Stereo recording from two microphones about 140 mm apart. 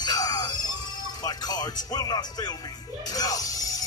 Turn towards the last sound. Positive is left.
turn(degrees=25)  # may be behind; listen again after turning